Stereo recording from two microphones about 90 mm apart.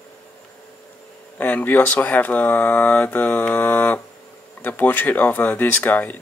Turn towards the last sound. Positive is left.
turn(degrees=20)  # may be behind; listen again after turning